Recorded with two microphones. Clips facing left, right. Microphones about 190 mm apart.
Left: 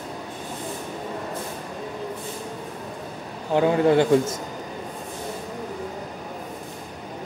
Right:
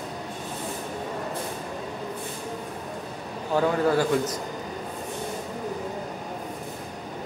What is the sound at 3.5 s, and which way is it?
Speech, 20° left (ahead or behind).